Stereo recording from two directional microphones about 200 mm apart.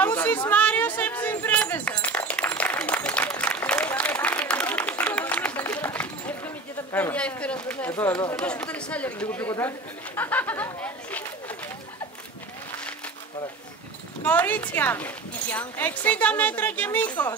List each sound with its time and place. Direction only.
0.0 s a sound: 10° left (ahead or behind)
8.4 s speech: 5° left (ahead or behind)
14.2 s speech: 10° left (ahead or behind)